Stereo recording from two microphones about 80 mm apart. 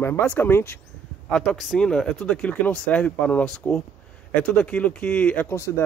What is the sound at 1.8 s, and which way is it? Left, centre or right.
Speech, centre.